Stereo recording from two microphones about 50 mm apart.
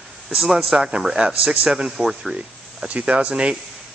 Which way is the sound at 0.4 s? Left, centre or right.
Centre.